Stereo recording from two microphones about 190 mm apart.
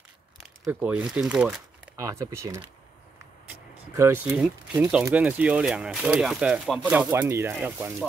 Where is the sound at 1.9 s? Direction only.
15° right (ahead or behind).